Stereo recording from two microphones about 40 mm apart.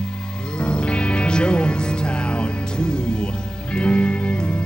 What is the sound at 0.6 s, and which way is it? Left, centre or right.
Music, left.